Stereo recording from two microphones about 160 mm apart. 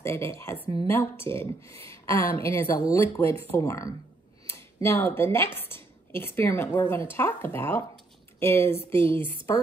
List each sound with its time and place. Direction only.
0.0 s speech: 15° left (ahead or behind)
8.9 s a woman's voice: 30° right (ahead or behind)